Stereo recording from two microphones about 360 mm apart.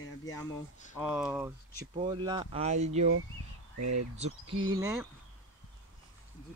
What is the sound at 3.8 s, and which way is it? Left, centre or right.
Speech, right.